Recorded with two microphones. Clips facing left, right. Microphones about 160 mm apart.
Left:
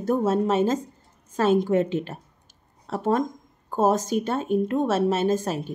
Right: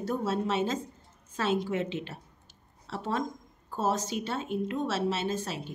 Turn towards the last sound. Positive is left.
turn(degrees=45)  # may be behind; listen again after turning